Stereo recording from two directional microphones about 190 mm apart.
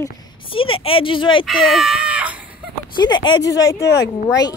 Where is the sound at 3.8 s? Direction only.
65° left (ahead or behind).